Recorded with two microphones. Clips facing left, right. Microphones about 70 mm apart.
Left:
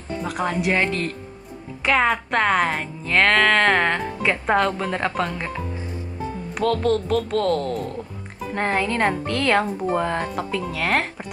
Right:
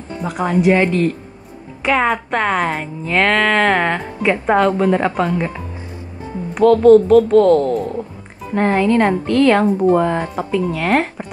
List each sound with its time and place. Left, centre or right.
0.2 s a woman's voice: centre